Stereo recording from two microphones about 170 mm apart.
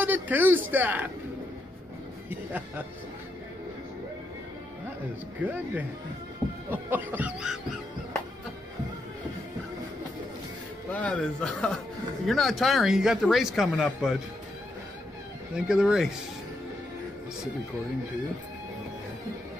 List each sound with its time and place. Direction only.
0.0 s speech: 10° right (ahead or behind)
5.4 s cough: 10° right (ahead or behind)
10.9 s a man's voice: 10° left (ahead or behind)
15.5 s speech: 5° right (ahead or behind)